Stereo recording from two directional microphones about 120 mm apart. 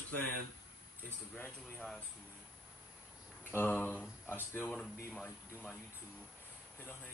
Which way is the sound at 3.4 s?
15° left (ahead or behind).